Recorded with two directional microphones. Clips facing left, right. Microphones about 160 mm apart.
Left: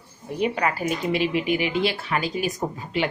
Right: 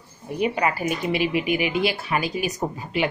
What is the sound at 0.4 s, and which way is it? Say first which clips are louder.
Speech: right 1 dB; 5° right (ahead or behind).